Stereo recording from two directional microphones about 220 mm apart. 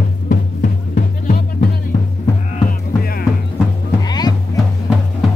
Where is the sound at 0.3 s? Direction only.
40° left (ahead or behind).